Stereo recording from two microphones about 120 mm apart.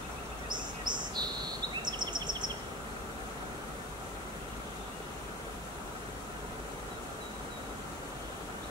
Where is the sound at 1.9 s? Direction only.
40° right (ahead or behind).